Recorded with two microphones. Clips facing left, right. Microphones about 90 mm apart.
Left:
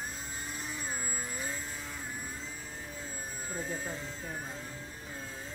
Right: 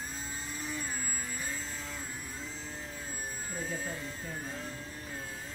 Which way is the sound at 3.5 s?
20° left (ahead or behind).